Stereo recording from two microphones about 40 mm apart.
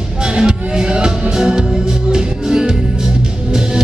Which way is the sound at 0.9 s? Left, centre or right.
Centre.